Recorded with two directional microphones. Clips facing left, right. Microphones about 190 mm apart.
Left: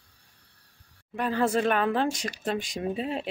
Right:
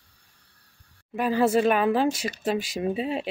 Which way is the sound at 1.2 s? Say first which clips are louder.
Right 4 dB; 10° right (ahead or behind).